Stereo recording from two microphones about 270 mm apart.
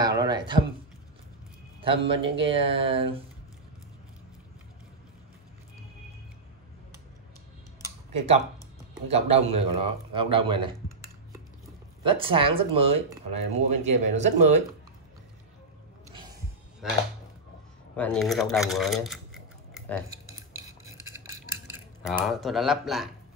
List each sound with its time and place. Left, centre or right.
0.0 s a sound: centre
1.8 s a man's voice: centre
9.0 s speech: right
12.0 s speech: centre
16.8 s speech: centre
20.3 s cutlery: centre
22.2 s speech: centre